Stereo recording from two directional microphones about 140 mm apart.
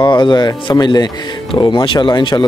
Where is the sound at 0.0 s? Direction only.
35° left (ahead or behind).